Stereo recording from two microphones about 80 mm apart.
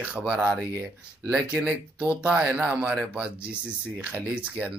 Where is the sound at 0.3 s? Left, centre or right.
Right.